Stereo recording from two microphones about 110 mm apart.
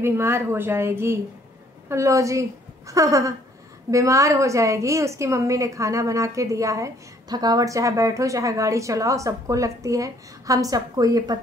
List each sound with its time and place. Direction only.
0.0 s a woman's voice: 20° right (ahead or behind)